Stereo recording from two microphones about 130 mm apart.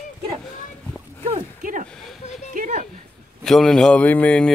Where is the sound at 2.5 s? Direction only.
80° right.